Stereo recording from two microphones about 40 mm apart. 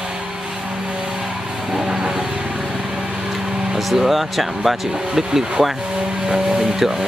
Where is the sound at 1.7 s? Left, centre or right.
Centre.